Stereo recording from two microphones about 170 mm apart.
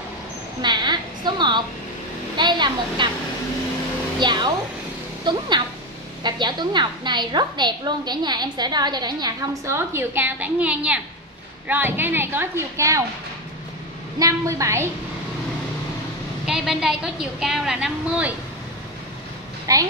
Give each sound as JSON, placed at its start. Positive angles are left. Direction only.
{"t": 0.6, "sound": "a woman's voice", "side_deg": -25}
{"t": 4.2, "sound": "a woman's voice", "side_deg": -25}
{"t": 6.2, "sound": "a woman's voice", "side_deg": -25}
{"t": 14.2, "sound": "a woman's voice", "side_deg": -15}
{"t": 16.4, "sound": "a woman's voice", "side_deg": -5}
{"t": 19.6, "sound": "a woman's voice", "side_deg": -20}